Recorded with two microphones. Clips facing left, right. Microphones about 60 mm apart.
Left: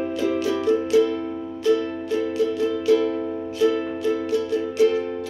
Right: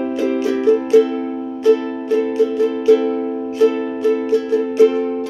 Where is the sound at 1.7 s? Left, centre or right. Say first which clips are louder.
Right 6 dB; right.